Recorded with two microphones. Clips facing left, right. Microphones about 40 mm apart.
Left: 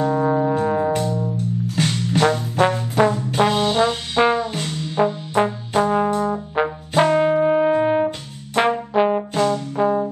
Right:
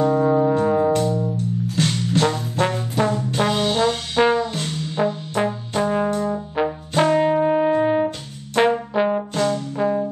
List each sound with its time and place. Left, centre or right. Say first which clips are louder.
0.3 s brass instrument: right 1 dB; centre
1.8 s trombone: left 1 dB; left
5.9 s brass instrument: left 2 dB; centre
9.3 s brass instrument: left 2 dB; left
9.8 s brass instrument: left 2 dB; centre